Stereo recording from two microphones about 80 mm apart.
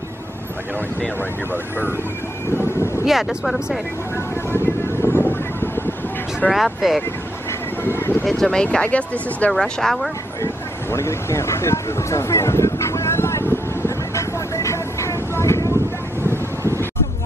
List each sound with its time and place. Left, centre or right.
3.1 s speech: centre
5.1 s wind noise: left
6.5 s speech: centre
7.8 s speech: left
8.3 s speech: centre
8.6 s speech: centre
9.5 s speech: centre
10.4 s vehicle: left